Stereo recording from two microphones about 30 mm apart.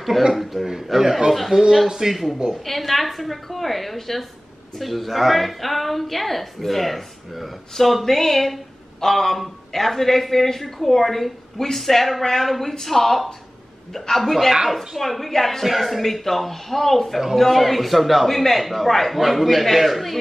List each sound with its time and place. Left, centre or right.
0.3 s a woman's voice: centre
2.5 s a woman's voice: centre
15.6 s a woman's voice: centre